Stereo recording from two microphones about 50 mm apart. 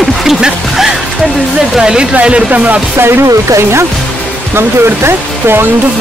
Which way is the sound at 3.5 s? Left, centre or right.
Right.